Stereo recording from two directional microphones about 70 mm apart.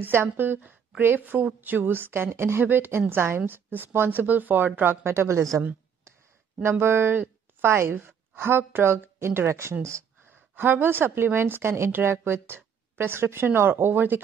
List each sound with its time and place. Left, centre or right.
0.0 s a woman's voice: right
6.6 s a woman's voice: right
10.5 s a woman's voice: right